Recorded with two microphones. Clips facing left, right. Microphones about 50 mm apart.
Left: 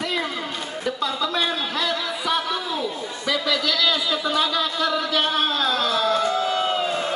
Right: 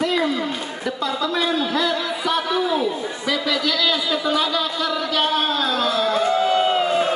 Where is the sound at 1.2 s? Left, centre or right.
Centre.